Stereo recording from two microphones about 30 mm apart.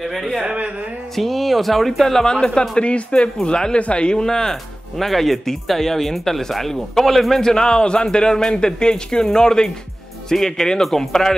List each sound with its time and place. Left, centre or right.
0.0 s speech: centre
2.8 s speech: left
3.4 s a man's voice: left
3.9 s speech: left
4.2 s a man's voice: centre
4.9 s speech: centre
7.4 s a man's voice: left